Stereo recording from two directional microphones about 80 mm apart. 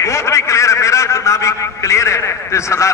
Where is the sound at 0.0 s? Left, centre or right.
Left.